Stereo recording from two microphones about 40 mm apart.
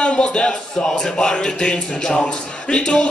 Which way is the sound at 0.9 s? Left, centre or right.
Centre.